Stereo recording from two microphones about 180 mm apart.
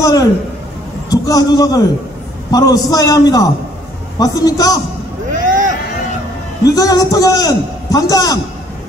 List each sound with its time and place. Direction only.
0.0 s a sound: 20° left (ahead or behind)
1.1 s a man's voice: 20° left (ahead or behind)
5.3 s vehicle: 45° right (ahead or behind)
6.7 s a man's voice: 20° left (ahead or behind)